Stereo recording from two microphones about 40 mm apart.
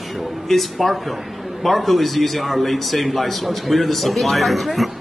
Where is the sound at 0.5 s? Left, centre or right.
Centre.